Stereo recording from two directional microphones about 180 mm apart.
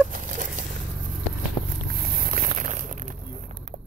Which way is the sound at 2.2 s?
50° right (ahead or behind).